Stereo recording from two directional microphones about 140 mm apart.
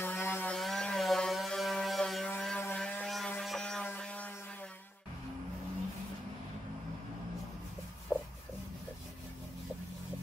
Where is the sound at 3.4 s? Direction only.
Centre (ahead or behind).